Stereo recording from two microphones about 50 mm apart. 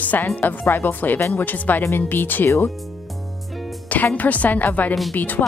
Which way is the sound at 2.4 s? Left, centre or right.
Left.